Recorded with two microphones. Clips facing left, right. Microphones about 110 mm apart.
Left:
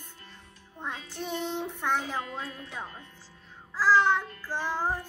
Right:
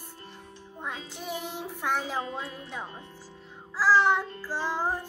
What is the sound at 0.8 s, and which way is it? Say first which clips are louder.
Music: left 1 dB; 10° right (ahead or behind).